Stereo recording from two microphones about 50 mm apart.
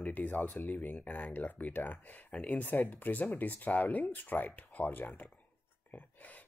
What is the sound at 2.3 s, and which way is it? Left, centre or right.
Speech, left.